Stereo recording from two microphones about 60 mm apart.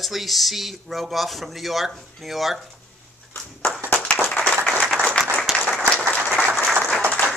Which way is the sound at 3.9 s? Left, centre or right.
Left.